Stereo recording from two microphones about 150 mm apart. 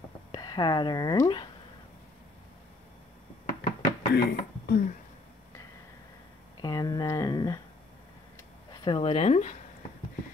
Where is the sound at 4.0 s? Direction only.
90° left.